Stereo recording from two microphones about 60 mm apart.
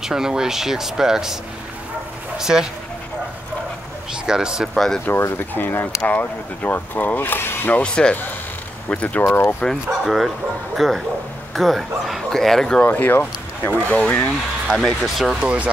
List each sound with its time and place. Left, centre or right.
0.0 s speech: centre
4.1 s speech: centre
4.7 s speech: centre
5.0 s speech: left
7.7 s speech: centre
9.7 s speech: centre
12.8 s speech: left
14.8 s speech: centre
15.4 s speech: right